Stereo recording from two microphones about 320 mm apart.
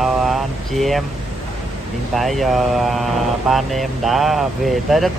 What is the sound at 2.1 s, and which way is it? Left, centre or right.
Speech, centre.